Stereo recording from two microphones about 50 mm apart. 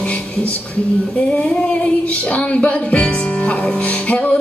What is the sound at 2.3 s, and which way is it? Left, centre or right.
Music, left.